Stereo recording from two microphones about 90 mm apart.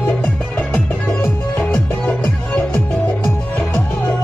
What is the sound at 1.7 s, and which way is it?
Music, 20° left (ahead or behind).